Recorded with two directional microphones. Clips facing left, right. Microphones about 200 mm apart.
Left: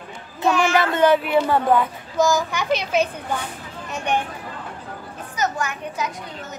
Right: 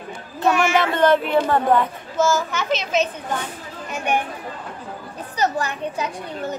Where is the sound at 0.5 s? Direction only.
5° right (ahead or behind).